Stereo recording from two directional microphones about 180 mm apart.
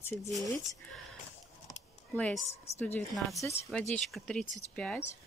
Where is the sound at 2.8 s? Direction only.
5° left (ahead or behind).